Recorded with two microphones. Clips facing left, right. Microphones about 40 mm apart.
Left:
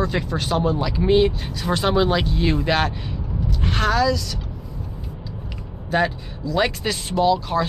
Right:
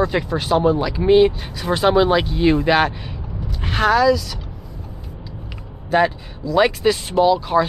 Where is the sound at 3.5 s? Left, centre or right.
Centre.